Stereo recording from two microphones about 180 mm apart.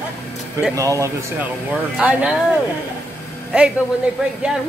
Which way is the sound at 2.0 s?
5° right (ahead or behind).